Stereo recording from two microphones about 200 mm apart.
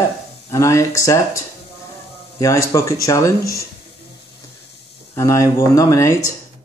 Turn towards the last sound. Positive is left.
turn(degrees=15)  # may be behind; listen again after turning